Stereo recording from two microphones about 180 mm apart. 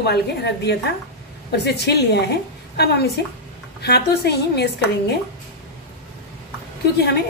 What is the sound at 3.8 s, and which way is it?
Speech, 65° left (ahead or behind).